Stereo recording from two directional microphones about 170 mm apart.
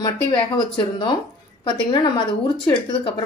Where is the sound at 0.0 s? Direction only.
30° left (ahead or behind).